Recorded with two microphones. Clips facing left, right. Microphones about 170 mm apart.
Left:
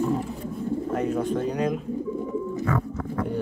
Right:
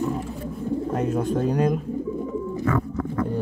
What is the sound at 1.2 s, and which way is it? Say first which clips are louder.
Speech: right 3 dB; 45° right (ahead or behind).